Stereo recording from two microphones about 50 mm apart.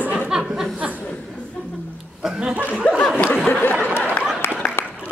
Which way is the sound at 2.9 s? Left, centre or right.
Left.